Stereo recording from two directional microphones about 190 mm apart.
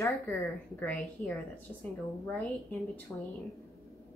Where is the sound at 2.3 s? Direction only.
5° left (ahead or behind).